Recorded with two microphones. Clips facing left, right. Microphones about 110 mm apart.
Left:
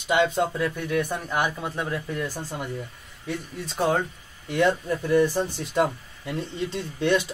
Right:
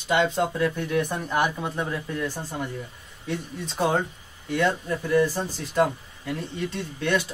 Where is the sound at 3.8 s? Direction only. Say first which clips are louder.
Even; centre (ahead or behind).